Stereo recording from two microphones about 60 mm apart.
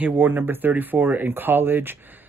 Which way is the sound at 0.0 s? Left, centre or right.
Right.